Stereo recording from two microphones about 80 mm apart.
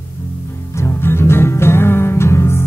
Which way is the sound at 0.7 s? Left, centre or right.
Left.